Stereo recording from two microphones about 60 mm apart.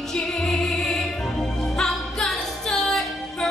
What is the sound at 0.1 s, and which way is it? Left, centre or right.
Music, centre.